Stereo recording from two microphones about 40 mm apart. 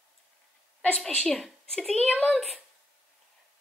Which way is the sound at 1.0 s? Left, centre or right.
Left.